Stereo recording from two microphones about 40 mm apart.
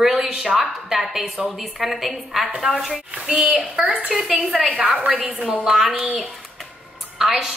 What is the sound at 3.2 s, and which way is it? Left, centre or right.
A woman's voice, centre.